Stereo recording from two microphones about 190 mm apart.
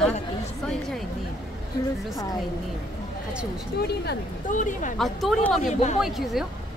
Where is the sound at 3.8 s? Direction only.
60° left (ahead or behind).